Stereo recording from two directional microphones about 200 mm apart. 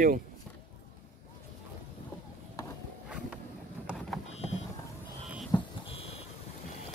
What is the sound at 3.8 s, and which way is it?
Clip-clop, centre (ahead or behind).